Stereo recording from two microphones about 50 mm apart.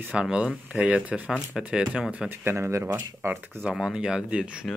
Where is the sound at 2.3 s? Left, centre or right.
Right.